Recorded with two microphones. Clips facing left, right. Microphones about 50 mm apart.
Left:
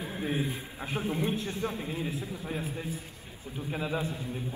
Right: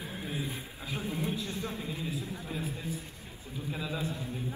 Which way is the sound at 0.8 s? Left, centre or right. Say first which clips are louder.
Left 4 dB; left.